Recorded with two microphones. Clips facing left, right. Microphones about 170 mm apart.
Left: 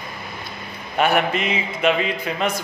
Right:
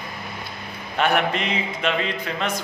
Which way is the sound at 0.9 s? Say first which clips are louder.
Left 2 dB; 5° left (ahead or behind).